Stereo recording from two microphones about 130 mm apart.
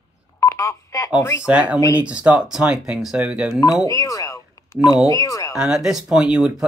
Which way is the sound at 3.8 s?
25° left (ahead or behind).